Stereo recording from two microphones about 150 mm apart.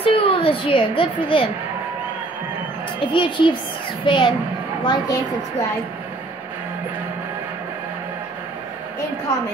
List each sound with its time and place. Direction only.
0.0 s a sound: 35° left (ahead or behind)
0.7 s a woman's voice: 35° left (ahead or behind)
3.1 s a woman's voice: 35° left (ahead or behind)